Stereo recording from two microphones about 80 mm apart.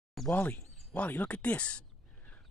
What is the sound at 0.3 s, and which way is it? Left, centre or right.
Speech, left.